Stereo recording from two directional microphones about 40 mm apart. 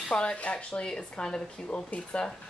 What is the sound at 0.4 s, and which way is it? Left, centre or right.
Speech, left.